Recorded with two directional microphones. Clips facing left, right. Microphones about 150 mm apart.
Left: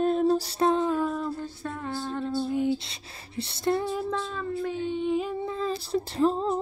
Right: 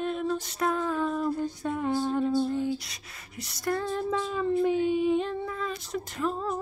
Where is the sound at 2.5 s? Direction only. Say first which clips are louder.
Left 3 dB; 20° left (ahead or behind).